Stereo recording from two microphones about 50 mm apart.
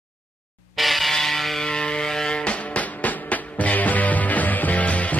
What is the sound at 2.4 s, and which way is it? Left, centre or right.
Music, left.